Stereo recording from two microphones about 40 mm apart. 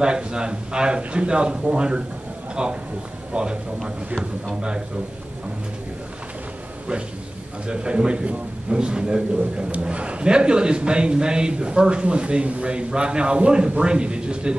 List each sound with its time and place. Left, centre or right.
0.0 s a man's voice: right
4.6 s a man's voice: right
7.6 s a man's voice: right
9.7 s a man's voice: right